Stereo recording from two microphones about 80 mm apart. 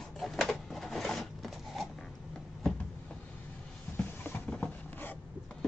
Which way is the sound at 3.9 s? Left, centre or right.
Left.